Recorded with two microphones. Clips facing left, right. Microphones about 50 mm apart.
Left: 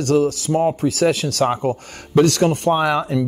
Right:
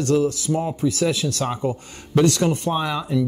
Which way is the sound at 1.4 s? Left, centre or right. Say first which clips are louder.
Left 5 dB; left.